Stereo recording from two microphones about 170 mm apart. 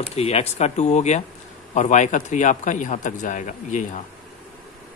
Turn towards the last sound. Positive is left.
turn(degrees=45)  # may be behind; listen again after turning